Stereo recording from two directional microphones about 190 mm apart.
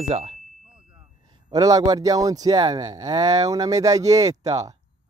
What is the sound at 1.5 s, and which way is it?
Speech, 20° right (ahead or behind).